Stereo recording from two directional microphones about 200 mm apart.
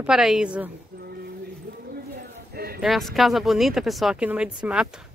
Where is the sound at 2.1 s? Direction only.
50° right (ahead or behind).